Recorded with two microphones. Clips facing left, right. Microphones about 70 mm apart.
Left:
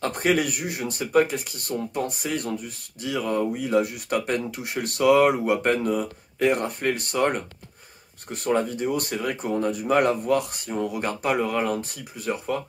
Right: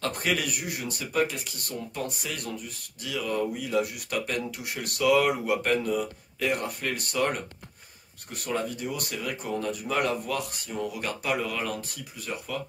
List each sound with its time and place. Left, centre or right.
0.0 s speech: left
9.4 s speech: left
9.8 s speech: left